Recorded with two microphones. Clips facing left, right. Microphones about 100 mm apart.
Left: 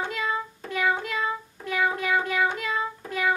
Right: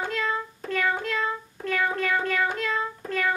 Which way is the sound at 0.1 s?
10° left (ahead or behind).